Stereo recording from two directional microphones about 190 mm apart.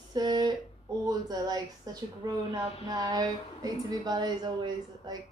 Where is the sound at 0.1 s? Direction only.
20° right (ahead or behind).